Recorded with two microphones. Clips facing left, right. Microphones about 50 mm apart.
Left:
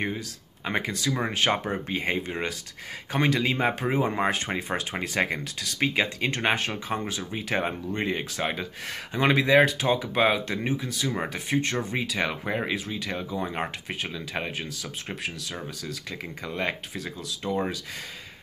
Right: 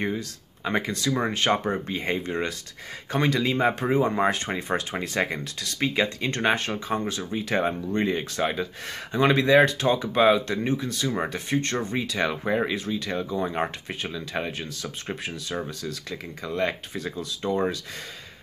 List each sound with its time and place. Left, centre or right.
0.7 s speech: centre
16.9 s speech: centre